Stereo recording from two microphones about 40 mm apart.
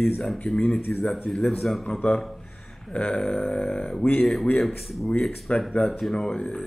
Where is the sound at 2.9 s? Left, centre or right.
Left.